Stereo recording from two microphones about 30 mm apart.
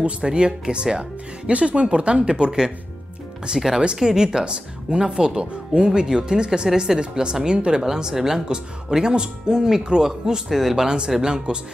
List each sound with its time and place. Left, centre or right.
0.2 s speech: right
1.5 s speech: right
7.8 s speech: centre
11.2 s speech: right